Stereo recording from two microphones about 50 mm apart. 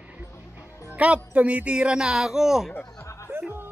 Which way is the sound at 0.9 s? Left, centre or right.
Right.